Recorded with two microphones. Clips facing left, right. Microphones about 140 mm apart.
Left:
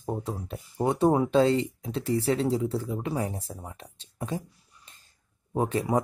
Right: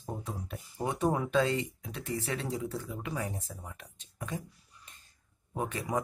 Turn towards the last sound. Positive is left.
turn(degrees=30)  # may be behind; listen again after turning